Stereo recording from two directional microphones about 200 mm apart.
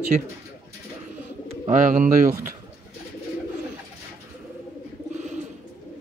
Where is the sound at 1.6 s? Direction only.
40° right (ahead or behind).